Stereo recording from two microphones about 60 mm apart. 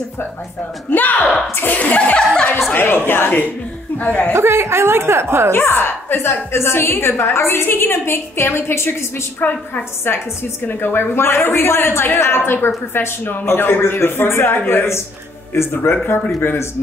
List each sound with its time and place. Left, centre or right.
0.8 s a woman's voice: left
1.8 s speech: left
2.7 s a woman's voice: left
4.3 s a woman's voice: right
5.5 s a woman's voice: left
9.4 s a woman's voice: left